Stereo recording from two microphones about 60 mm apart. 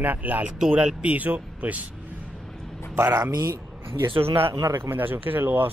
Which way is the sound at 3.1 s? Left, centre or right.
Right.